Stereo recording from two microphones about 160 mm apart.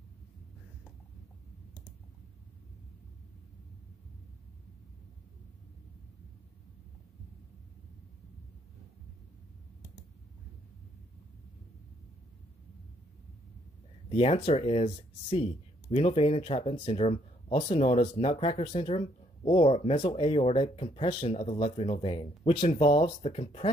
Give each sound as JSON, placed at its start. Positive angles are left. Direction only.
{"t": 14.0, "sound": "speech", "side_deg": 40}